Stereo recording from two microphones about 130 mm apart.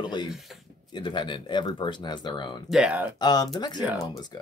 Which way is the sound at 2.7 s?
10° right (ahead or behind).